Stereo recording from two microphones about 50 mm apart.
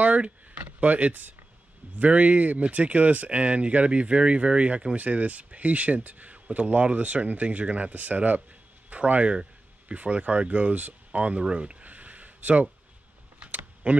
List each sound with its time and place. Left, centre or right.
0.0 s a sound: right
0.7 s speech: right
13.4 s keys jangling: right